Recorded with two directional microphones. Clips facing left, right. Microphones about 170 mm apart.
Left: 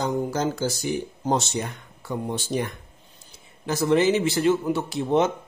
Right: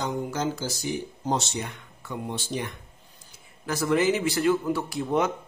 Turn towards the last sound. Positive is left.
turn(degrees=25)  # may be behind; listen again after turning